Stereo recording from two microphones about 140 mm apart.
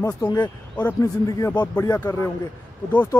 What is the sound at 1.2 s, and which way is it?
A man's voice, 25° left (ahead or behind).